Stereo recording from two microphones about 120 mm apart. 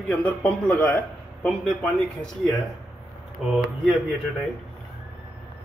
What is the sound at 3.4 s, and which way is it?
Speech, 5° right (ahead or behind).